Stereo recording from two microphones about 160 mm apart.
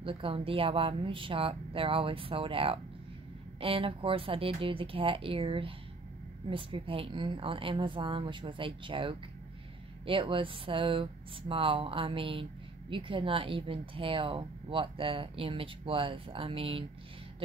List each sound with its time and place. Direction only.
0.0 s speech: 35° right (ahead or behind)